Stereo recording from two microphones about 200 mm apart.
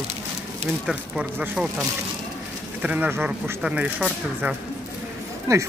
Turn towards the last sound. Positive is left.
turn(degrees=-15)  # may be behind; listen again after turning